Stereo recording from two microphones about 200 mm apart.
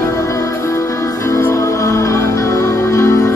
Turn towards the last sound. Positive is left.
turn(degrees=15)  # may be behind; listen again after turning